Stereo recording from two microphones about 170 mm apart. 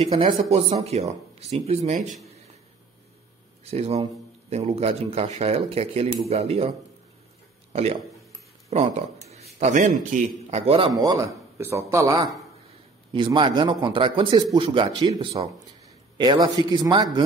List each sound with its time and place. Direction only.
0.3 s speech: 40° right (ahead or behind)
3.7 s speech: 40° right (ahead or behind)
7.7 s a man's voice: 40° right (ahead or behind)
11.0 s speech: 20° right (ahead or behind)
13.1 s a man's voice: 30° right (ahead or behind)